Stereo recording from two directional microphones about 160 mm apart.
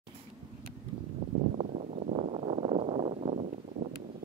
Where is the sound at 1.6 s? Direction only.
45° right (ahead or behind).